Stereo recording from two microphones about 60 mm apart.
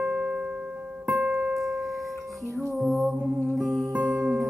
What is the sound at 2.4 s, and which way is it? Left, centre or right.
Music, right.